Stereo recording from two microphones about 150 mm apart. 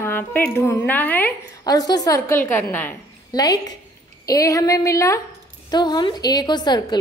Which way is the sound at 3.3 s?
25° left (ahead or behind).